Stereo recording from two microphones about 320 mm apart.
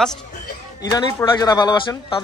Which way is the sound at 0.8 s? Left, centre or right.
Centre.